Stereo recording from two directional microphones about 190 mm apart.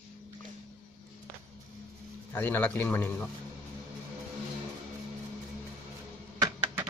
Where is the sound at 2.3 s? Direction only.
10° left (ahead or behind).